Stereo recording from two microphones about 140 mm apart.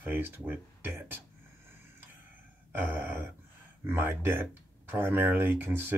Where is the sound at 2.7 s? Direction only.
15° right (ahead or behind).